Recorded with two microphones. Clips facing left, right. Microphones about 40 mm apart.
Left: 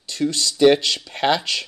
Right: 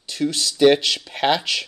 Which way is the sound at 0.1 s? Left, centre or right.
Centre.